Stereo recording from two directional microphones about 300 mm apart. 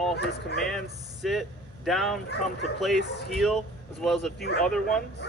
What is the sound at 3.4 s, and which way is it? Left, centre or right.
Speech, centre.